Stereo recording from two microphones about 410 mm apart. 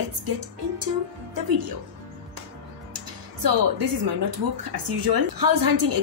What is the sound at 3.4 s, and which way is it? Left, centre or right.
Speech, right.